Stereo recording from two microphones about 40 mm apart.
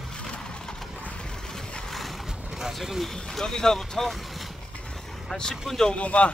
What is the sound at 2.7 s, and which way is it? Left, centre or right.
Speech, centre.